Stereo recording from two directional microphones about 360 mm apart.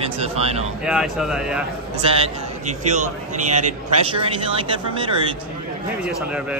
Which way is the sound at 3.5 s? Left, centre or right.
Centre.